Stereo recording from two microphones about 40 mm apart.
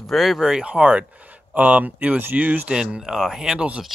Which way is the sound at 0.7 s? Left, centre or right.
Right.